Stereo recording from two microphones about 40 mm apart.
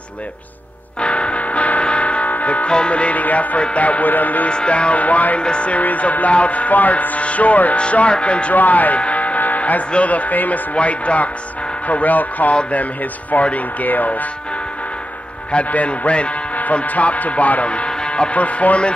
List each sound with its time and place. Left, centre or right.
1.0 s music: left
2.7 s a man's voice: left
4.5 s speech: left
5.0 s a man's voice: left
5.4 s a man's voice: left
7.8 s speech: left
8.5 s speech: left
10.7 s a man's voice: left
15.5 s a man's voice: left
17.6 s music: left
18.3 s a man's voice: left